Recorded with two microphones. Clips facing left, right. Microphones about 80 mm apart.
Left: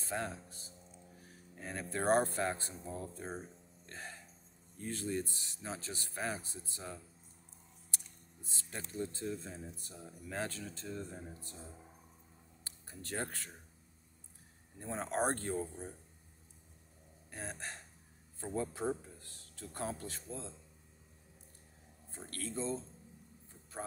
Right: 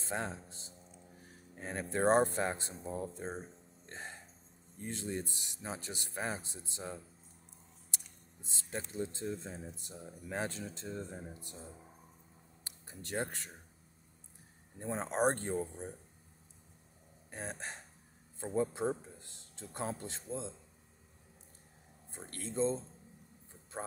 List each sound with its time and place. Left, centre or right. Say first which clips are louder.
0.0 s speech: right 1 dB; right
12.8 s speech: right 3 dB; centre
14.8 s speech: right 2 dB; right
17.3 s a man's voice: right 2 dB; right
22.1 s speech: right 2 dB; right